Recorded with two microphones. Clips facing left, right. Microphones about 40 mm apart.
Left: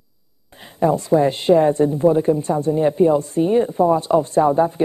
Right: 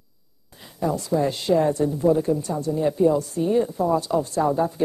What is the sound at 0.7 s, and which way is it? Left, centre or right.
A woman's voice, left.